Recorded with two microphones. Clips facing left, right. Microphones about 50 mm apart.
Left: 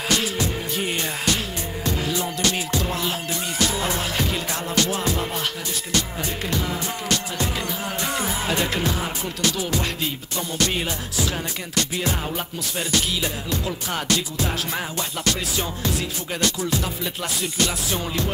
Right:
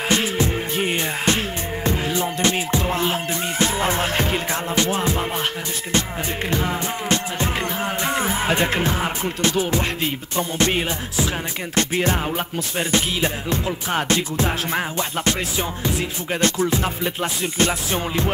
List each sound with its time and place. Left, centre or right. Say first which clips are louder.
0.1 s music: right 3 dB; right